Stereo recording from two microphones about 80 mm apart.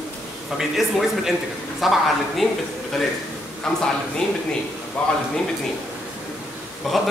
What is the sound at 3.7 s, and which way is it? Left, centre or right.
A man's voice, centre.